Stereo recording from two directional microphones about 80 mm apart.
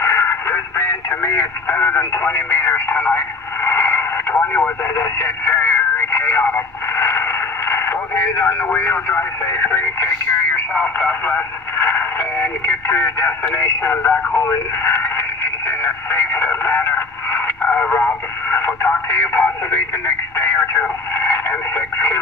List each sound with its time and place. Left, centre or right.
0.0 s radio: left
10.7 s speech: centre
15.8 s radio: left
20.3 s a sound: left
21.1 s radio: left